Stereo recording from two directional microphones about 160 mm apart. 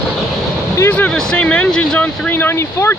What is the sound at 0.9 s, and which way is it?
Speech, 5° left (ahead or behind).